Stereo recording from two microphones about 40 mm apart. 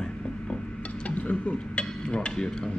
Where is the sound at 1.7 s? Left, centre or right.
Left.